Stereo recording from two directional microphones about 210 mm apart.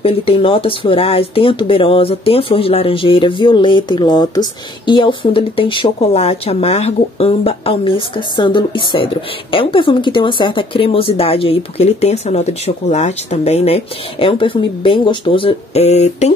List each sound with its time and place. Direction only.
0.0 s speech: 25° left (ahead or behind)